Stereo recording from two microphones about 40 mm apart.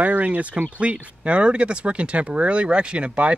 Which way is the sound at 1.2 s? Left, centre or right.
Right.